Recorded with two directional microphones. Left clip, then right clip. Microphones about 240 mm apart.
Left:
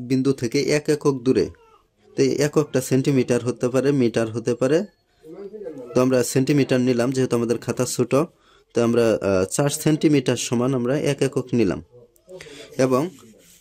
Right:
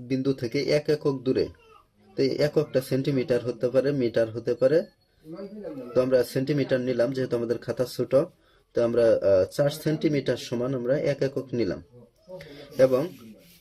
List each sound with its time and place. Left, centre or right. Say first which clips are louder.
0.1 s speech: left 5 dB; left
5.9 s speech: left 3 dB; left